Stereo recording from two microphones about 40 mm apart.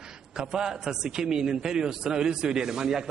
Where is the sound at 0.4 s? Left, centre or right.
Centre.